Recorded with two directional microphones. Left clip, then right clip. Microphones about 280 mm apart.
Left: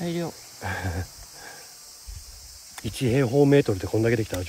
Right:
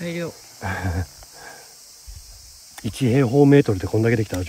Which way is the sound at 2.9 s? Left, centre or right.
Right.